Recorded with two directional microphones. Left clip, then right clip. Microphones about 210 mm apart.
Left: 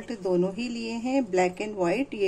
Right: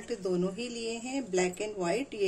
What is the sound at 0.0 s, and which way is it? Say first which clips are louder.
Speech: left 5 dB; 15° left (ahead or behind).